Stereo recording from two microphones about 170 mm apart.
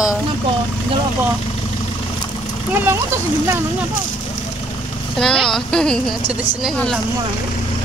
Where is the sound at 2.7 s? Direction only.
10° right (ahead or behind).